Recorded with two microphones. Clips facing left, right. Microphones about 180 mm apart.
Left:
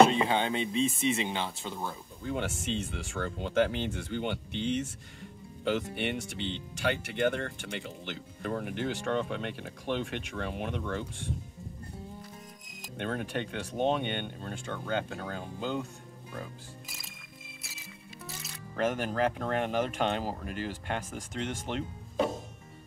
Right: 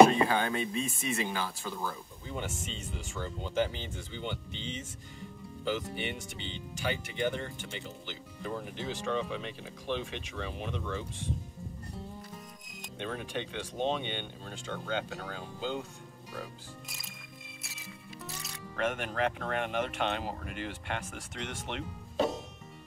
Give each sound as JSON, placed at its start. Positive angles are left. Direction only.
{"t": 0.0, "sound": "speech", "side_deg": 25}
{"t": 2.2, "sound": "speech", "side_deg": 70}
{"t": 13.0, "sound": "speech", "side_deg": 55}
{"t": 16.9, "sound": "music", "side_deg": 0}
{"t": 18.8, "sound": "speech", "side_deg": 40}